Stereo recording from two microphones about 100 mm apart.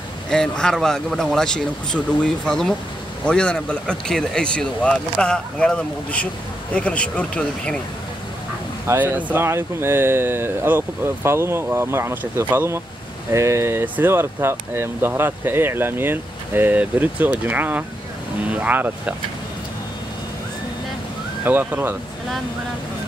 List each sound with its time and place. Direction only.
0.3 s speech: 5° left (ahead or behind)
8.8 s speech: 20° right (ahead or behind)
21.5 s speech: 20° right (ahead or behind)